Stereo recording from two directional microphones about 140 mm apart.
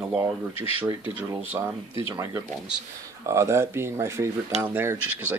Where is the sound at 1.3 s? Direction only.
20° right (ahead or behind).